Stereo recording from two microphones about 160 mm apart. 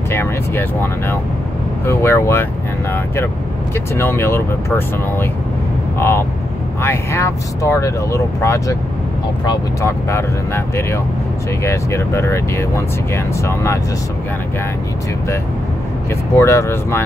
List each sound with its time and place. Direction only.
0.1 s speech: 15° left (ahead or behind)
1.9 s speech: 15° left (ahead or behind)
3.9 s speech: 15° left (ahead or behind)
16.3 s speech: 15° left (ahead or behind)